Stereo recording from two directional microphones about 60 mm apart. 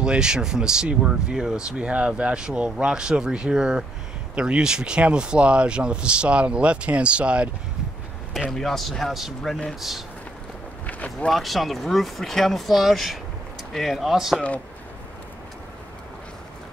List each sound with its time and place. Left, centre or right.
0.0 s speech: centre
8.3 s speech: centre
11.2 s speech: centre